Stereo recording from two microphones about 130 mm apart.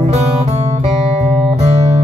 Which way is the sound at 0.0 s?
55° right (ahead or behind).